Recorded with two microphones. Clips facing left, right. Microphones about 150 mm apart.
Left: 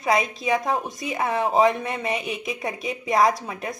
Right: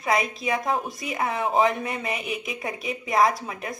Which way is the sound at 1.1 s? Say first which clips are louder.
Left 3 dB; 25° left (ahead or behind).